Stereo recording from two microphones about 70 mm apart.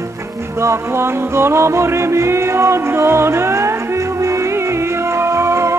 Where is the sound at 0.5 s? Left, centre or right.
Right.